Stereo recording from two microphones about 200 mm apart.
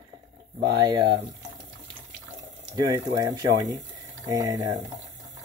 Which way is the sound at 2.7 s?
15° right (ahead or behind).